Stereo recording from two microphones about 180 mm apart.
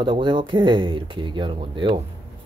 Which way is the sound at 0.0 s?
25° right (ahead or behind).